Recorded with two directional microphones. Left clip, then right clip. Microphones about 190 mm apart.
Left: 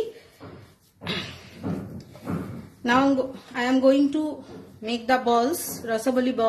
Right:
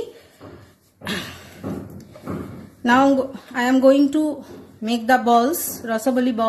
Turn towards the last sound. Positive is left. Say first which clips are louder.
# right 3 dB
turn(degrees=-10)  # may be behind; listen again after turning